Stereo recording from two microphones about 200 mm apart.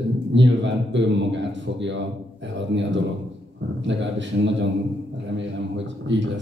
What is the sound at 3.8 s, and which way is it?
A man's voice, 65° right (ahead or behind).